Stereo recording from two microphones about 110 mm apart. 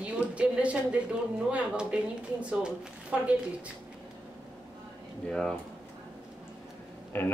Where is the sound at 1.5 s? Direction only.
10° right (ahead or behind).